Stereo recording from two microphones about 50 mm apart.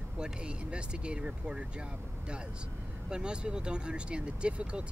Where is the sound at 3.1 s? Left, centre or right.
Centre.